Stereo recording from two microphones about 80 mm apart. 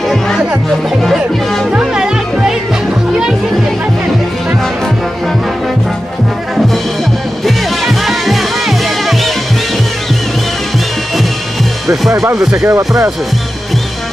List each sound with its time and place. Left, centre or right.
0.7 s music: centre
1.7 s music: centre
7.4 s music: centre
12.1 s speech: right